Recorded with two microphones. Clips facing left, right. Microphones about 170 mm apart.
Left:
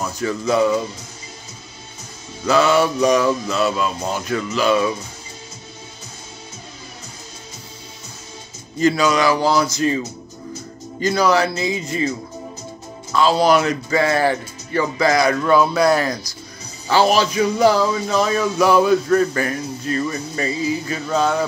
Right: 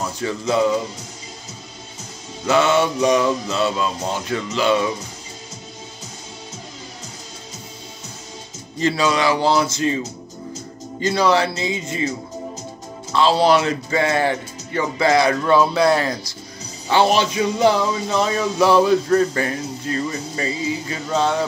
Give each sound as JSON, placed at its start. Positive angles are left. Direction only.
{"t": 0.2, "sound": "speech", "side_deg": -25}
{"t": 2.4, "sound": "speech", "side_deg": -25}
{"t": 8.7, "sound": "speech", "side_deg": -30}
{"t": 11.0, "sound": "speech", "side_deg": -25}
{"t": 13.1, "sound": "speech", "side_deg": -30}